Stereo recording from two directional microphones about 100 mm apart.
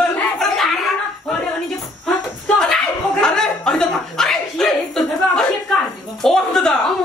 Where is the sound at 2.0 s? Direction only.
5° left (ahead or behind).